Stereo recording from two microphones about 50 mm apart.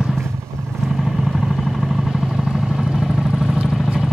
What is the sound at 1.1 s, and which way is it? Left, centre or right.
Vehicle, centre.